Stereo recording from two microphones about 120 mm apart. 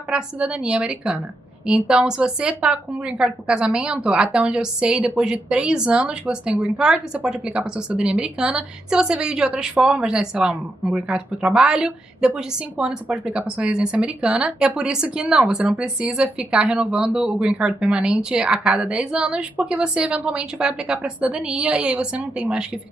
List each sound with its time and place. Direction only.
0.1 s a woman's voice: 10° right (ahead or behind)